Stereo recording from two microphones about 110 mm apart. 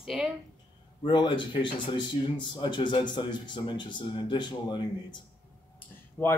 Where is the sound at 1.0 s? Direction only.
45° left (ahead or behind).